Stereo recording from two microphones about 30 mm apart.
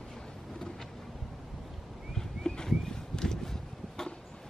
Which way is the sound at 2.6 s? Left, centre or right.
Centre.